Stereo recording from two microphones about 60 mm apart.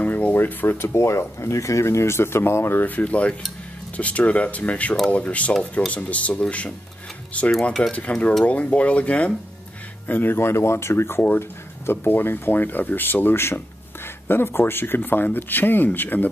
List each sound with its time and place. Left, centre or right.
0.0 s speech: left
3.0 s speech: left
10.0 s speech: left